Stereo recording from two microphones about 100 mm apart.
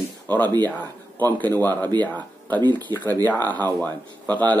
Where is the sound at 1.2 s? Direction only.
20° left (ahead or behind).